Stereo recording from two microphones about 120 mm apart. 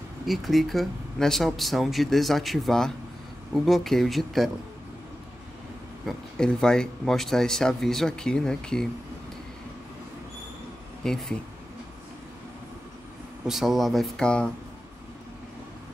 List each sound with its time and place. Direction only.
0.3 s speech: centre (ahead or behind)
6.0 s speech: 5° left (ahead or behind)
11.0 s speech: 5° left (ahead or behind)
13.5 s speech: centre (ahead or behind)